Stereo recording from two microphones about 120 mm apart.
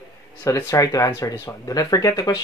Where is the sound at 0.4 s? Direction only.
25° left (ahead or behind).